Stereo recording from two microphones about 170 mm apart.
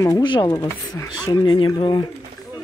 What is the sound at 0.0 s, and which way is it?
Speech, 25° left (ahead or behind).